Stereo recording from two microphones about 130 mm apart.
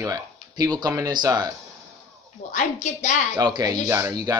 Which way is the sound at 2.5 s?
70° left (ahead or behind).